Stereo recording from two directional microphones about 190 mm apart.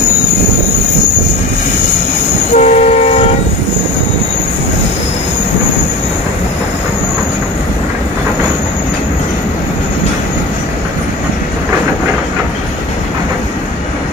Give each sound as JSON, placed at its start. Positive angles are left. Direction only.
{"t": 2.5, "sound": "train", "side_deg": 35}